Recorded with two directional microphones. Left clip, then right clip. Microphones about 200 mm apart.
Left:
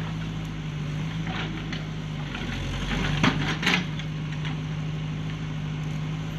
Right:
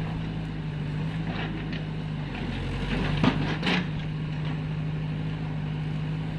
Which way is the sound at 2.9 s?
30° left (ahead or behind).